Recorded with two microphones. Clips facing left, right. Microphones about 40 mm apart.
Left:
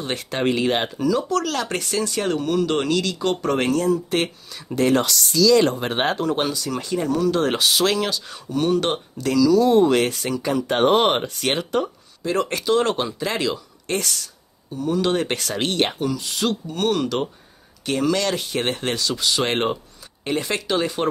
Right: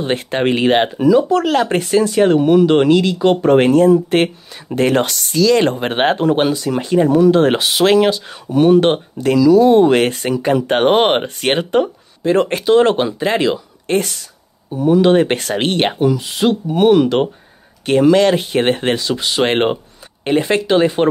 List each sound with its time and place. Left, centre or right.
0.0 s speech: right
17.8 s speech: right